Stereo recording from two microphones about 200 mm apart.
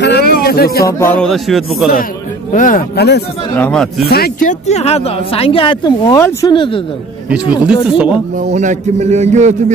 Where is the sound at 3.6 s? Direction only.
5° left (ahead or behind).